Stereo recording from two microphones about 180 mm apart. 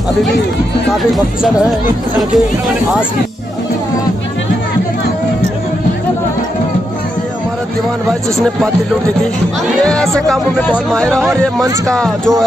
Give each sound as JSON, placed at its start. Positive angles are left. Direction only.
{"t": 1.1, "sound": "speech", "side_deg": 0}
{"t": 9.8, "sound": "speech", "side_deg": 5}